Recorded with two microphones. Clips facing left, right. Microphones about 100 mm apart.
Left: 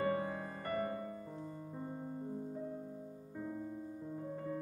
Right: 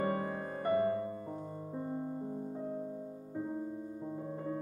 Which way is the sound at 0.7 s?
35° right (ahead or behind).